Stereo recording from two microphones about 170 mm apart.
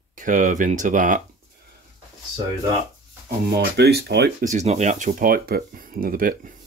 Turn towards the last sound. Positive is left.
turn(degrees=-55)  # may be behind; listen again after turning